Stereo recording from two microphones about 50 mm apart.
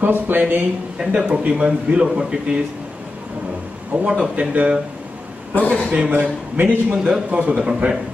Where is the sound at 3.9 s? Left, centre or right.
Right.